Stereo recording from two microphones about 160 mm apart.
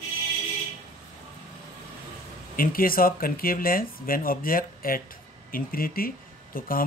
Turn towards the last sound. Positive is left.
turn(degrees=65)  # may be behind; listen again after turning